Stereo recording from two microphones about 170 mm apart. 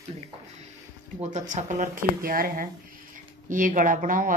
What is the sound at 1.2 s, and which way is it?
Speech, 45° right (ahead or behind).